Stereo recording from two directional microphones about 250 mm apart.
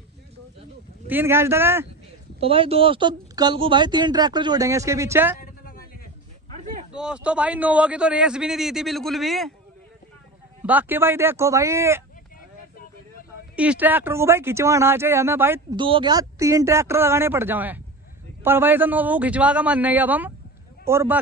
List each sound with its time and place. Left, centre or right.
1.0 s speech: centre
2.4 s speech: right
5.4 s a sound: left
6.5 s a sound: right
6.9 s a man's voice: centre
10.6 s speech: centre
13.6 s speech: centre